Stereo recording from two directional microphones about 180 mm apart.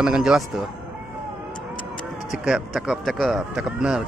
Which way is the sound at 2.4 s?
5° right (ahead or behind).